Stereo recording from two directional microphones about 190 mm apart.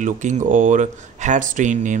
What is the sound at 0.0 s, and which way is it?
Speech, 40° right (ahead or behind).